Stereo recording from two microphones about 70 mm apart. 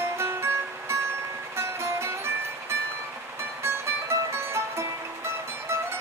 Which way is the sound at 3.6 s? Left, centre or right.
Right.